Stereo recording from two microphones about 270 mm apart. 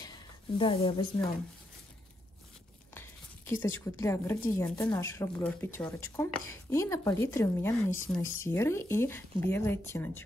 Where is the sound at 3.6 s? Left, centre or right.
Centre.